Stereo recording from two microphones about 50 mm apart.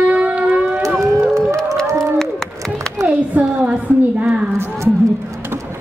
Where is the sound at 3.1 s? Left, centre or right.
Right.